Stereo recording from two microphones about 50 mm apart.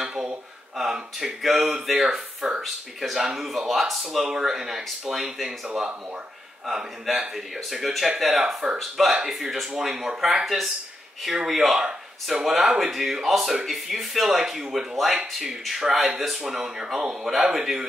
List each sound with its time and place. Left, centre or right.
0.0 s a sound: centre
0.7 s speech: centre
6.6 s speech: centre